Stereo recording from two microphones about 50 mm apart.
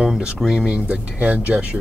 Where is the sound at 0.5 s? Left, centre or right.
Right.